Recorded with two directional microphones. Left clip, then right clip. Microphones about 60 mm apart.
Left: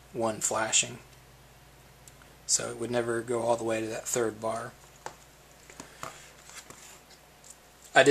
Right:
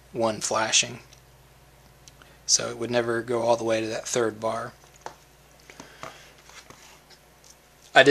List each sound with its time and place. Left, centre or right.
0.2 s speech: right
2.5 s speech: right
5.8 s a sound: centre
7.9 s a man's voice: right